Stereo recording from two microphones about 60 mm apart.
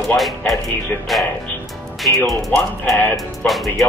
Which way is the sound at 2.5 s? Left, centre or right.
Left.